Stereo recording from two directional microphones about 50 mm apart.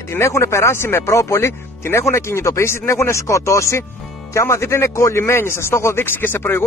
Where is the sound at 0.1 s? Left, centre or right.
Left.